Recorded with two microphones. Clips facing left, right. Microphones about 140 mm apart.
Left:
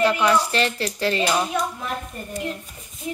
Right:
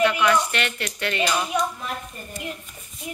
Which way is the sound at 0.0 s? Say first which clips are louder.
Left 1 dB; 30° left (ahead or behind).